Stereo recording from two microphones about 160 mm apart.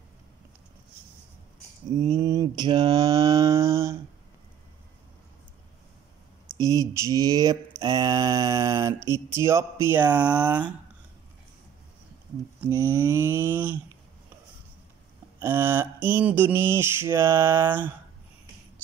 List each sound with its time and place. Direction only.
2.0 s mantra: 25° right (ahead or behind)
6.6 s mantra: 20° right (ahead or behind)
12.5 s mantra: 15° right (ahead or behind)
15.4 s mantra: 15° right (ahead or behind)